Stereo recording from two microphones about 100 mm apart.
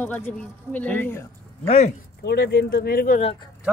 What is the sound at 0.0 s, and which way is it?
A man's voice, 15° left (ahead or behind).